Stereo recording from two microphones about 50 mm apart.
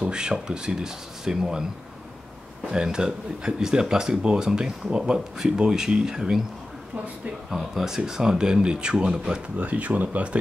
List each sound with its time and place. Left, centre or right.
0.0 s speech: centre
2.7 s speech: centre
7.4 s speech: centre
9.6 s speech: right